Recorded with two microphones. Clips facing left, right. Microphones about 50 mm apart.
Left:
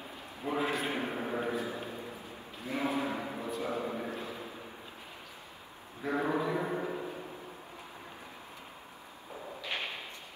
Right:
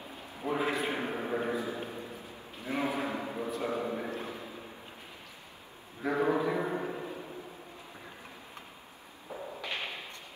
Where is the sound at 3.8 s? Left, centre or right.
Right.